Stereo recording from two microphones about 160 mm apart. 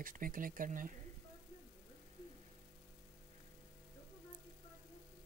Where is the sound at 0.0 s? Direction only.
60° right (ahead or behind).